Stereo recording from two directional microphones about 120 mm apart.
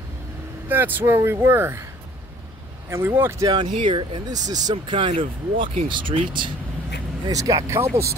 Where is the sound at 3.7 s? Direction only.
45° right (ahead or behind).